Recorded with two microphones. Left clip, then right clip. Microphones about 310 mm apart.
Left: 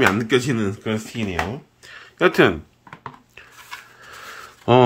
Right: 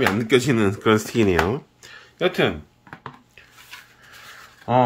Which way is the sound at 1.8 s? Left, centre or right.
Centre.